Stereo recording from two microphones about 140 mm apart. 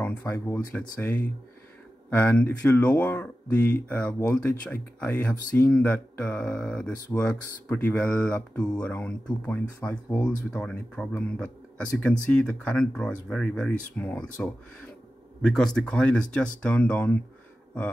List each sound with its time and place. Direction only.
0.0 s speech: 10° left (ahead or behind)
7.1 s speech: 20° left (ahead or behind)